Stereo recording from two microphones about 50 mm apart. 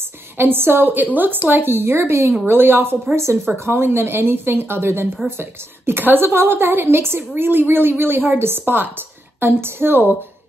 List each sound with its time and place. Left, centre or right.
0.4 s speech: right
2.4 s speech: right